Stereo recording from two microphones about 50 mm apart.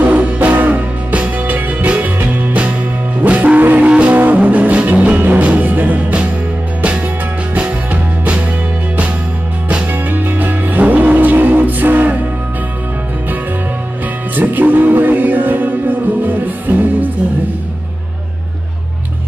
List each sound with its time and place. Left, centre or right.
0.0 s music: right
7.5 s music: right
10.0 s music: right
14.3 s music: right